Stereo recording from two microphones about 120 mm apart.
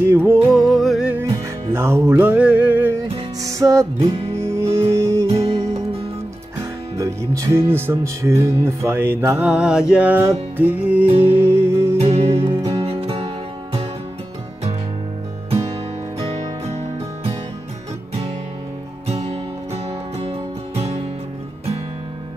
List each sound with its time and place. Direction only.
0.0 s music: 15° right (ahead or behind)
0.5 s music: centre (ahead or behind)
1.1 s music: 20° right (ahead or behind)
3.4 s music: 30° right (ahead or behind)
6.6 s speech: 25° right (ahead or behind)
9.5 s mantra: 5° right (ahead or behind)
11.1 s music: 55° right (ahead or behind)
11.3 s music: 20° right (ahead or behind)
12.0 s music: 60° right (ahead or behind)
16.6 s music: 55° right (ahead or behind)
19.0 s music: 60° right (ahead or behind)